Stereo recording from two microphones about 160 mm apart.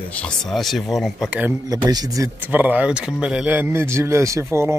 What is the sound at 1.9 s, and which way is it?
Speech, 25° right (ahead or behind).